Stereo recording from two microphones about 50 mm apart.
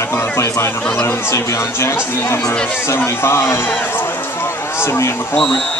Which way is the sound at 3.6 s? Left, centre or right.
Left.